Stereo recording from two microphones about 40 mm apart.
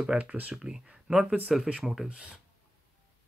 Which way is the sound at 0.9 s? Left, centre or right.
Centre.